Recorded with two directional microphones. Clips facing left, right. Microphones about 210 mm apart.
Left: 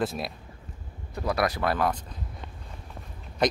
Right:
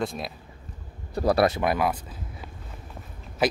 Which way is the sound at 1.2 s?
30° right (ahead or behind).